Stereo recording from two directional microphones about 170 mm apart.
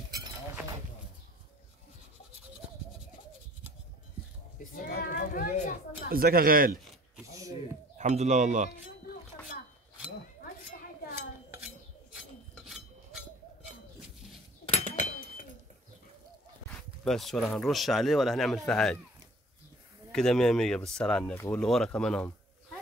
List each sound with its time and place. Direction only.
4.7 s children playing: 60° left (ahead or behind)
6.0 s speech: 60° right (ahead or behind)
7.2 s a sound: 20° right (ahead or behind)
8.0 s speech: 45° right (ahead or behind)
10.4 s a sound: 60° left (ahead or behind)
11.1 s cutlery: 10° right (ahead or behind)
12.6 s chink: centre (ahead or behind)
14.7 s a sound: 45° left (ahead or behind)
17.0 s speech: centre (ahead or behind)
20.1 s speech: 5° left (ahead or behind)